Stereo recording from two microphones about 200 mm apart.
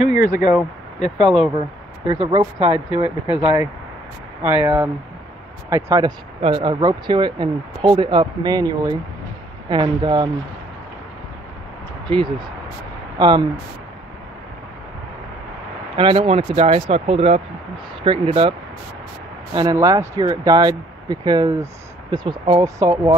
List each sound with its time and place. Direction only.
0.0 s speech: 40° left (ahead or behind)
2.0 s speech: 30° right (ahead or behind)
4.4 s speech: 10° right (ahead or behind)
12.1 s speech: 25° right (ahead or behind)
16.0 s speech: 25° right (ahead or behind)
19.5 s speech: 20° right (ahead or behind)